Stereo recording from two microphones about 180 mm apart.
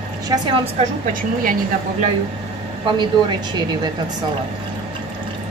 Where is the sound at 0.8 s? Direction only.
40° right (ahead or behind).